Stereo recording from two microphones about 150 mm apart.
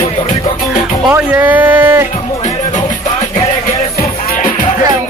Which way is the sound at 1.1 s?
10° right (ahead or behind).